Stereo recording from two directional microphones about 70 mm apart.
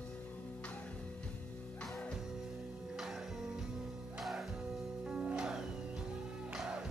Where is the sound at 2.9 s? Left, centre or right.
Centre.